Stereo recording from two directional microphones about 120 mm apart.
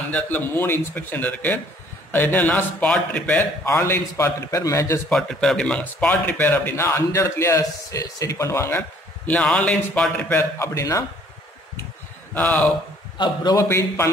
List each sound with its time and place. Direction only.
0.1 s a man's voice: 15° left (ahead or behind)
5.1 s speech: centre (ahead or behind)
9.4 s speech: 5° left (ahead or behind)
10.3 s a man's voice: 25° left (ahead or behind)
12.4 s speech: 15° left (ahead or behind)
13.2 s a man's voice: 35° left (ahead or behind)
13.7 s a man's voice: 20° left (ahead or behind)